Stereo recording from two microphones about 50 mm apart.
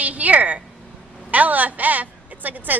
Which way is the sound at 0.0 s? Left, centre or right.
Right.